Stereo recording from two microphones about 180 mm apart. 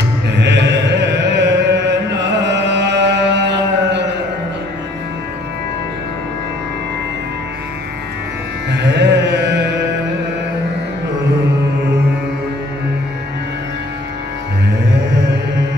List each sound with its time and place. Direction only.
0.4 s chant: 75° right (ahead or behind)
8.6 s music: 70° right (ahead or behind)